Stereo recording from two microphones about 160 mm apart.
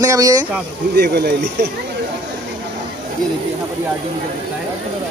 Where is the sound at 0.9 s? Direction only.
85° right.